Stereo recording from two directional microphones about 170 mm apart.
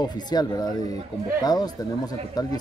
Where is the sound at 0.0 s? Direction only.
25° left (ahead or behind).